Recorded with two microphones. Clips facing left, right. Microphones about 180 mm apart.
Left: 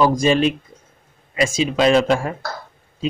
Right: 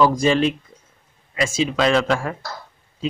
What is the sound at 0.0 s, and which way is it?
A man's voice, 15° left (ahead or behind).